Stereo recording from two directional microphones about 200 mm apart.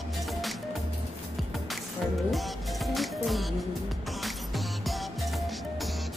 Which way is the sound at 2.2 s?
Centre (ahead or behind).